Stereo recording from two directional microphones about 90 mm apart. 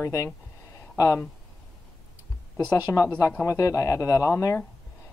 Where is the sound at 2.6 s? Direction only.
50° left (ahead or behind).